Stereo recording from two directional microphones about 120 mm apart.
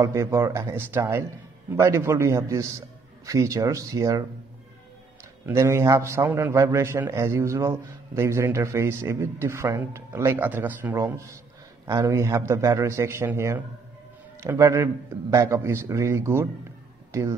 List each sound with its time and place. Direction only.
0.0 s a man's voice: 25° right (ahead or behind)
5.5 s a man's voice: 20° right (ahead or behind)